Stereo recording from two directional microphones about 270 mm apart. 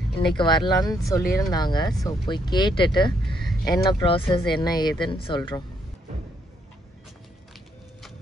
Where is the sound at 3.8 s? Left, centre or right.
Centre.